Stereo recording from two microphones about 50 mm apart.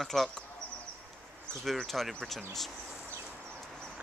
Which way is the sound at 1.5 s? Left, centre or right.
Centre.